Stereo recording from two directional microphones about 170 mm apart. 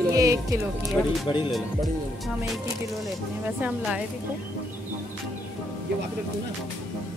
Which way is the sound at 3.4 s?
10° right (ahead or behind).